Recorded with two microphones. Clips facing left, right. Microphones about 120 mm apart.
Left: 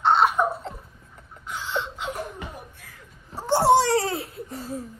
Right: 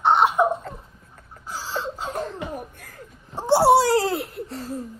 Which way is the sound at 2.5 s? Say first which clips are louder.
Right 8 dB; 45° right (ahead or behind).